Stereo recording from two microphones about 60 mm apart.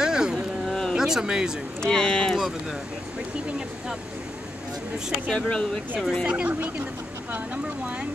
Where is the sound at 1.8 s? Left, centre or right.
Centre.